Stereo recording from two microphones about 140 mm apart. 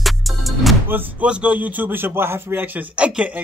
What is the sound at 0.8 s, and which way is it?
Speech, 15° right (ahead or behind).